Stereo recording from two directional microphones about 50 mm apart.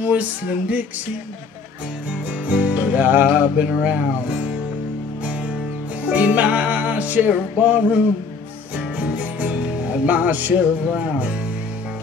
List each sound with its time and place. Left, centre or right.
0.0 s speech: right
2.4 s music: right
3.8 s speech: right
5.2 s music: right